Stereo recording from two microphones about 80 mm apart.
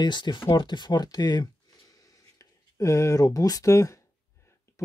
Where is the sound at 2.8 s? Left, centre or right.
Left.